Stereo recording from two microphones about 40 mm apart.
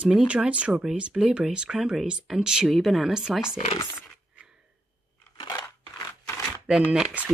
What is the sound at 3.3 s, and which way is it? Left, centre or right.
Speech, centre.